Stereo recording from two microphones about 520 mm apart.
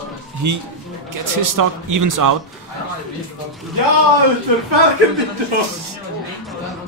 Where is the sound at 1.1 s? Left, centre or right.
Right.